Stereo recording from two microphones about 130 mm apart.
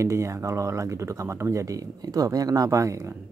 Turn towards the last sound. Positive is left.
turn(degrees=-20)  # may be behind; listen again after turning